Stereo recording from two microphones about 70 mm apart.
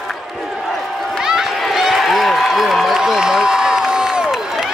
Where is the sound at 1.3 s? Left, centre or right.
Centre.